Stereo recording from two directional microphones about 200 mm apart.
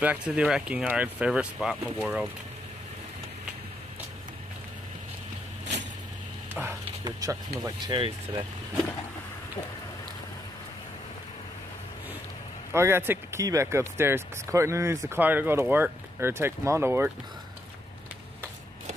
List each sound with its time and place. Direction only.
0.0 s speech: 5° right (ahead or behind)
7.1 s speech: 15° right (ahead or behind)
12.7 s speech: 10° right (ahead or behind)